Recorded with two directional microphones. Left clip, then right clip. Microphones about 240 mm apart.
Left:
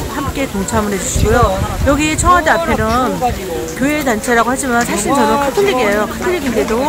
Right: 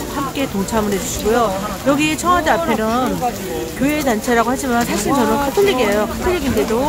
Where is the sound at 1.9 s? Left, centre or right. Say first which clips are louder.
Left 4 dB; centre.